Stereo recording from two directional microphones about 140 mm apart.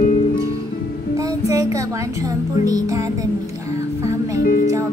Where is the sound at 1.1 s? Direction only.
25° right (ahead or behind).